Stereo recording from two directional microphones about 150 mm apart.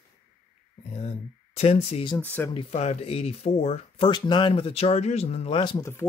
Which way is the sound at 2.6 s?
45° left (ahead or behind).